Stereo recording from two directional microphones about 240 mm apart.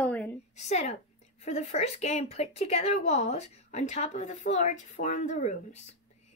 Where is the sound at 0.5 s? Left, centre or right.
Left.